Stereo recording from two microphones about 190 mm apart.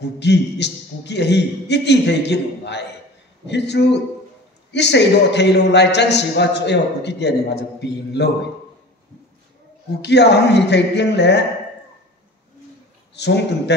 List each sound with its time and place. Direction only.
0.0 s a man's voice: 65° left (ahead or behind)
10.0 s a man's voice: 65° left (ahead or behind)
13.1 s a man's voice: 65° left (ahead or behind)